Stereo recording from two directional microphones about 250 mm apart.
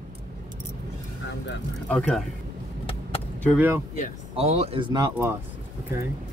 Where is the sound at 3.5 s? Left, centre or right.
Centre.